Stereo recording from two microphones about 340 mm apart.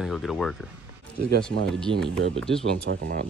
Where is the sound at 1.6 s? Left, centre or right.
Centre.